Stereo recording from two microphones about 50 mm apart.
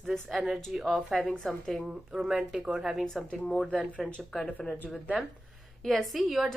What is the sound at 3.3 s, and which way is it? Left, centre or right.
Speech, centre.